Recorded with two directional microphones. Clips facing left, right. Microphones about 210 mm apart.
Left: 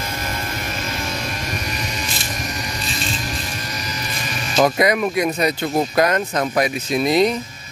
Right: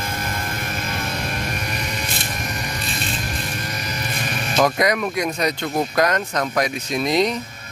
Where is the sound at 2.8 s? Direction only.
60° right (ahead or behind).